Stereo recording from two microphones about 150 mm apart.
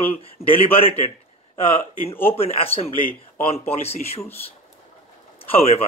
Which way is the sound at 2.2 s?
40° left (ahead or behind).